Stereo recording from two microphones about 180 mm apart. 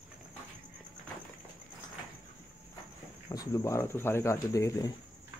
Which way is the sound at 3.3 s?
15° left (ahead or behind).